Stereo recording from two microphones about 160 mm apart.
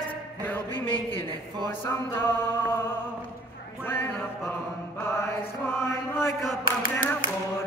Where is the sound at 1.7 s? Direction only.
15° left (ahead or behind).